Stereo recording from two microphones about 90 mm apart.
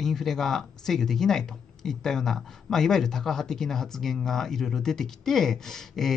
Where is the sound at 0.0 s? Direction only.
5° left (ahead or behind).